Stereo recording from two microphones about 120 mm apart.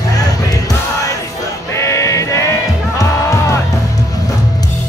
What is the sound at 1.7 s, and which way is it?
Music, 25° left (ahead or behind).